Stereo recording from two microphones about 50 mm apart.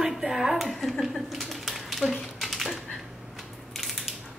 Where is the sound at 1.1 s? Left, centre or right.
Centre.